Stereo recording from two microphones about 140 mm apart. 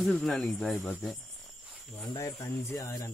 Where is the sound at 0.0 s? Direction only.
5° left (ahead or behind).